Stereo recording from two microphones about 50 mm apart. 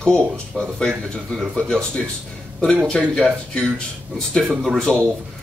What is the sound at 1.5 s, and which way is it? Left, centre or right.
Speech, centre.